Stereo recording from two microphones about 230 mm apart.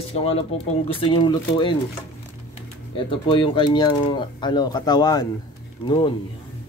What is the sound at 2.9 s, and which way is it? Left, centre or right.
Speech, left.